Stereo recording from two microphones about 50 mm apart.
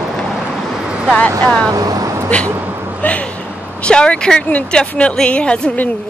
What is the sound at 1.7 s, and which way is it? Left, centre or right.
Speech, right.